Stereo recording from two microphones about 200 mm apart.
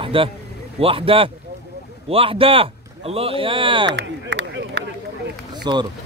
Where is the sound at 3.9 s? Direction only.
60° right (ahead or behind).